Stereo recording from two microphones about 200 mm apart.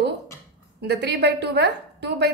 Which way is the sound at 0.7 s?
55° right (ahead or behind).